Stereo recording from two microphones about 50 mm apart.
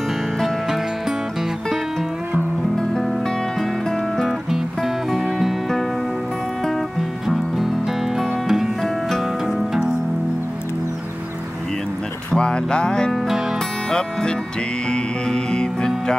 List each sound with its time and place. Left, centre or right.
4.2 s music: centre
7.2 s music: centre
12.3 s music: centre